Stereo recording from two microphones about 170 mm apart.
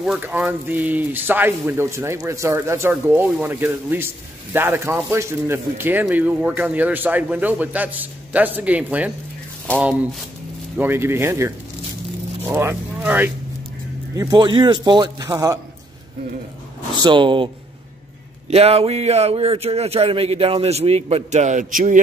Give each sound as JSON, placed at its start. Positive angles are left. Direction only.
{"t": 0.0, "sound": "a man's voice", "side_deg": -5}
{"t": 10.8, "sound": "a man's voice", "side_deg": -15}
{"t": 14.1, "sound": "a man's voice", "side_deg": -25}
{"t": 16.9, "sound": "a man's voice", "side_deg": -25}
{"t": 18.5, "sound": "speech", "side_deg": -35}